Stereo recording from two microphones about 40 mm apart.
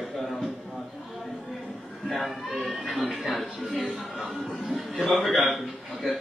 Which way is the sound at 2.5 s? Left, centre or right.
Centre.